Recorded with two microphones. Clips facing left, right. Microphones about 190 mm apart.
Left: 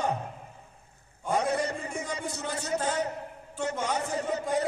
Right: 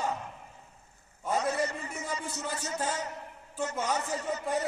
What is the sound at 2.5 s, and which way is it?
Speech, 65° left (ahead or behind).